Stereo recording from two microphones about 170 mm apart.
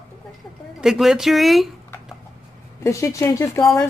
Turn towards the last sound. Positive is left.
turn(degrees=20)  # may be behind; listen again after turning